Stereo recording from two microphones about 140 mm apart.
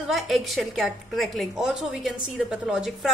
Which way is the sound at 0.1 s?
Centre (ahead or behind).